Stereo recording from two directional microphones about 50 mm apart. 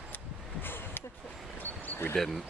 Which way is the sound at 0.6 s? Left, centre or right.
Left.